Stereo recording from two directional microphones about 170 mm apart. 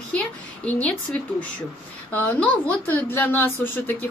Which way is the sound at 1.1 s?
5° left (ahead or behind).